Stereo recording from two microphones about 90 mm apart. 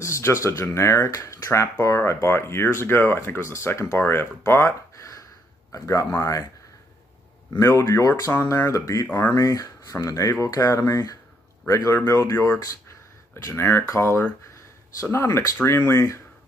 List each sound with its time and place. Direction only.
0.0 s speech: 35° left (ahead or behind)
7.5 s speech: 35° left (ahead or behind)
8.3 s speech: 25° left (ahead or behind)
13.4 s speech: 35° left (ahead or behind)